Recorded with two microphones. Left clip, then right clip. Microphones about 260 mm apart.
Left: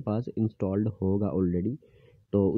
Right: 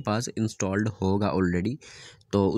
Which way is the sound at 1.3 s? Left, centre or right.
Centre.